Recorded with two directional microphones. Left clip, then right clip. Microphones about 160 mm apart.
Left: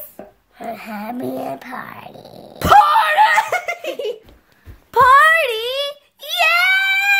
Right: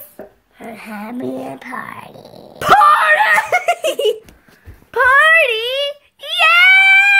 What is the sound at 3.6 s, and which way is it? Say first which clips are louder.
Giggle: right 8 dB; 20° right (ahead or behind).